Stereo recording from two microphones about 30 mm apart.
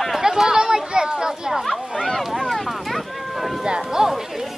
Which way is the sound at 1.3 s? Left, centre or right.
Centre.